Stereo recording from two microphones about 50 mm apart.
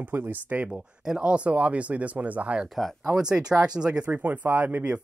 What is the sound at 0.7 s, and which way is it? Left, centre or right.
Speech, centre.